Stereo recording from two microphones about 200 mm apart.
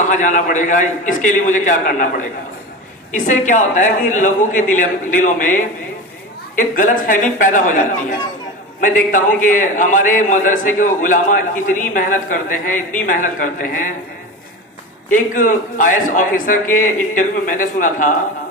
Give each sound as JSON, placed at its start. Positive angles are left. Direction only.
{"t": 0.0, "sound": "a man's voice", "side_deg": 40}
{"t": 15.0, "sound": "a man's voice", "side_deg": 40}